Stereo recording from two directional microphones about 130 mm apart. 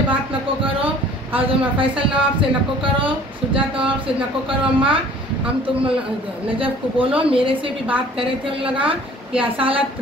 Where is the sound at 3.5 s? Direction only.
40° right (ahead or behind).